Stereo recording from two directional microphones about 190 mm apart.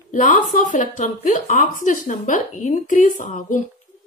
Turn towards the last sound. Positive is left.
turn(degrees=40)  # may be behind; listen again after turning